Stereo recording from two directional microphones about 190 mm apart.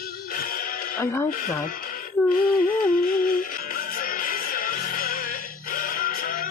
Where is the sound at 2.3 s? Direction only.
50° left (ahead or behind).